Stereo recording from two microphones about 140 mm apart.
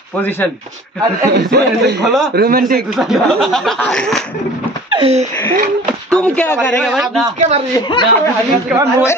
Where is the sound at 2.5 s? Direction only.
90° right.